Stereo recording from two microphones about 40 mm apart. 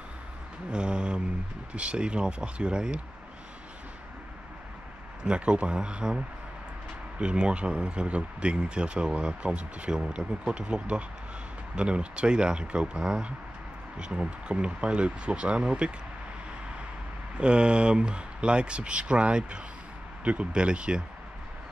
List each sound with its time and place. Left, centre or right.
0.7 s mantra: right
1.7 s speech: right
5.2 s speech: right
17.4 s speech: right